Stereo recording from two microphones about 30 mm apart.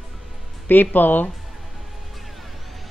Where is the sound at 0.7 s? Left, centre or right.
Left.